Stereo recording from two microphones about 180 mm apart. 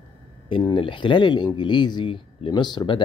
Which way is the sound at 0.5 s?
25° left (ahead or behind).